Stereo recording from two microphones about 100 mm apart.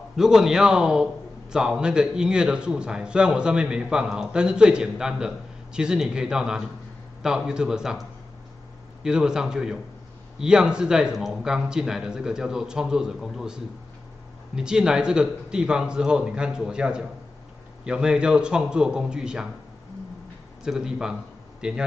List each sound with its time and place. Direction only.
0.1 s a man's voice: 5° right (ahead or behind)
9.0 s a man's voice: 5° right (ahead or behind)
20.6 s a man's voice: 5° right (ahead or behind)